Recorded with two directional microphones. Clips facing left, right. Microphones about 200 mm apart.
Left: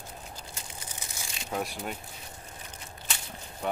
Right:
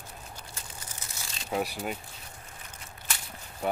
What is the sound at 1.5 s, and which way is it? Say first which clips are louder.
Speech: right 3 dB; 5° right (ahead or behind).